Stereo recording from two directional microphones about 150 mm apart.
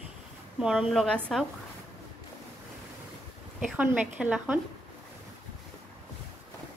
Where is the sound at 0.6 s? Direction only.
5° right (ahead or behind).